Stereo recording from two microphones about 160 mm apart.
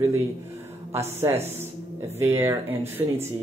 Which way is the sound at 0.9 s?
15° right (ahead or behind).